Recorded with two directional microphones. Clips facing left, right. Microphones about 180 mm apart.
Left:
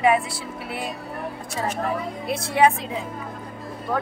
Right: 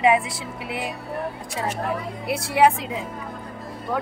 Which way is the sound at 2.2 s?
10° right (ahead or behind).